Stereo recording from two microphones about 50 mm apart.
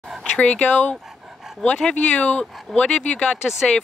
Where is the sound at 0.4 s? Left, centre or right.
Left.